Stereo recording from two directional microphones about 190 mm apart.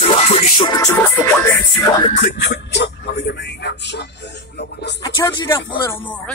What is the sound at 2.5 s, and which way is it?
Speech, 65° left (ahead or behind).